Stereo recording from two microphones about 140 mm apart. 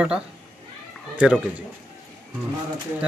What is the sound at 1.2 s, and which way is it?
Speech, 10° right (ahead or behind).